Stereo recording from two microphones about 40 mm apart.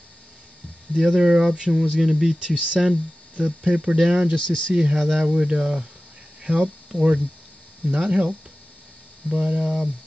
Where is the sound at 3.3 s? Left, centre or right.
Right.